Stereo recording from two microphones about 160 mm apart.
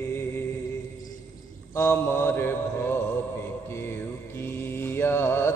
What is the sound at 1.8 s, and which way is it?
Mantra, 15° left (ahead or behind).